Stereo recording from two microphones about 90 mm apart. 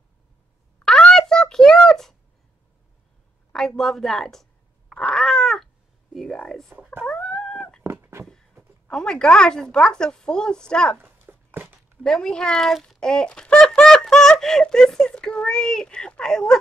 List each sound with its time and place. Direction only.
0.8 s a sound: 5° left (ahead or behind)
3.5 s cat: 5° left (ahead or behind)
6.1 s a woman's voice: 10° left (ahead or behind)
7.1 s dog: 10° left (ahead or behind)
7.8 s cat: 25° right (ahead or behind)
8.8 s a woman's voice: 10° left (ahead or behind)
11.0 s a sound: 20° right (ahead or behind)
12.0 s a woman's voice: 10° left (ahead or behind)